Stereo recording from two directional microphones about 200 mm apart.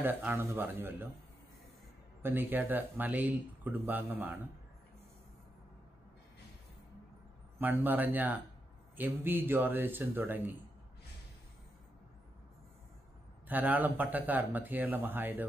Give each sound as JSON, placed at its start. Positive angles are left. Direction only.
{"t": 0.0, "sound": "speech", "side_deg": -10}
{"t": 2.2, "sound": "speech", "side_deg": -10}
{"t": 7.5, "sound": "speech", "side_deg": -10}
{"t": 13.5, "sound": "speech", "side_deg": -10}